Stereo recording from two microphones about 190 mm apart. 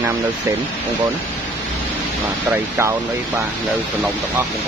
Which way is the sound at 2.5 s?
15° right (ahead or behind).